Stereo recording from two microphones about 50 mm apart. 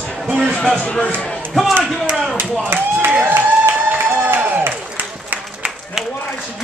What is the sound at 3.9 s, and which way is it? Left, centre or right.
Music, right.